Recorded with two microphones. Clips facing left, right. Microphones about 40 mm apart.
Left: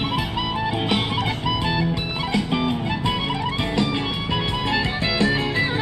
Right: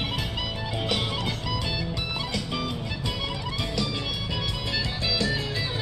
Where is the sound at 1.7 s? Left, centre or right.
Left.